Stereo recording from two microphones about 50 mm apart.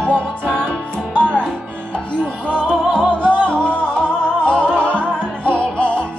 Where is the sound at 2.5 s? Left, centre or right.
Left.